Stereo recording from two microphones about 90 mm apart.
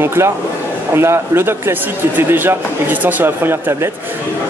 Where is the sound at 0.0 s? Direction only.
25° right (ahead or behind).